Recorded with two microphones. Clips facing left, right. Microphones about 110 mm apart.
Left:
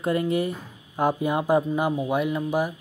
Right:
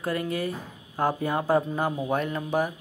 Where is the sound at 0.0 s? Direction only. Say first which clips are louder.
Left 5 dB; 25° left (ahead or behind).